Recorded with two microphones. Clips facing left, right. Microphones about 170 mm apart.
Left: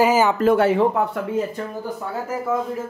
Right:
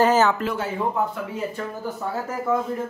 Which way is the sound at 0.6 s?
70° left (ahead or behind).